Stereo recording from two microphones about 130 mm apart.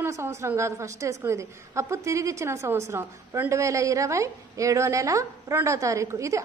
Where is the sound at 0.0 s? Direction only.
20° right (ahead or behind).